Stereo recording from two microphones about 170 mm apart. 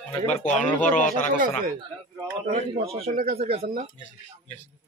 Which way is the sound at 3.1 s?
60° right (ahead or behind).